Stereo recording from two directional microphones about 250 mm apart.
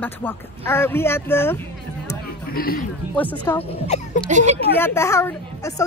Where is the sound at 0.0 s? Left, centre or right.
Centre.